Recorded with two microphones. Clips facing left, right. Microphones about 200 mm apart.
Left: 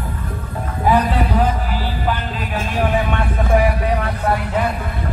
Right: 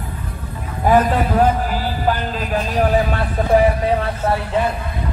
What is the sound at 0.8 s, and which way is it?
Music, 45° right (ahead or behind).